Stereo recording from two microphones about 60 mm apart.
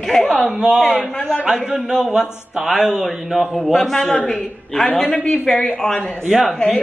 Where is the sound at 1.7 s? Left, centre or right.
Centre.